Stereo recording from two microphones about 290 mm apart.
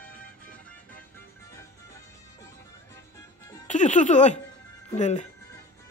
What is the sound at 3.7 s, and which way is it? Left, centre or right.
Speech, left.